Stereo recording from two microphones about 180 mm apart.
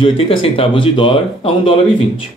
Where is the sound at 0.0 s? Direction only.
30° left (ahead or behind).